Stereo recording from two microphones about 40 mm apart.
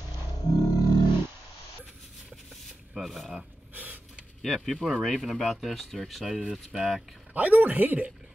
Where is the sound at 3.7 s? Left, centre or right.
Right.